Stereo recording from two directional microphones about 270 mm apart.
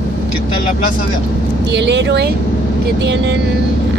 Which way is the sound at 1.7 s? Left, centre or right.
Right.